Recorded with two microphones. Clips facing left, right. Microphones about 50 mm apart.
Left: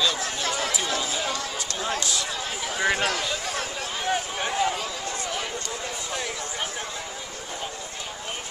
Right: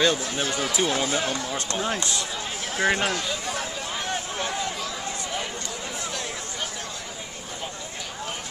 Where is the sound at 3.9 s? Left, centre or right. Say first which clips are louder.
Left 4 dB; centre.